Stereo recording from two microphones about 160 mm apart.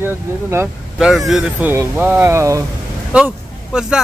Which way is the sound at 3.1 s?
5° right (ahead or behind).